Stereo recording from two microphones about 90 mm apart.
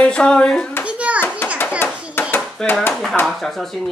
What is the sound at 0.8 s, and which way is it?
Hands, 15° right (ahead or behind).